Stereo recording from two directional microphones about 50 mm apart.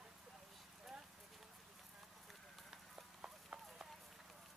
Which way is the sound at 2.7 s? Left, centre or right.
Centre.